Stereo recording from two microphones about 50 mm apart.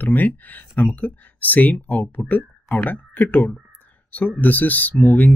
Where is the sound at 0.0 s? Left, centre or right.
Left.